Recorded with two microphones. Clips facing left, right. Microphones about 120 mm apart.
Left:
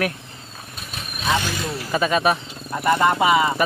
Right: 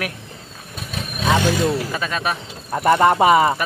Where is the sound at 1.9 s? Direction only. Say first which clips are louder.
Left 5 dB; 10° left (ahead or behind).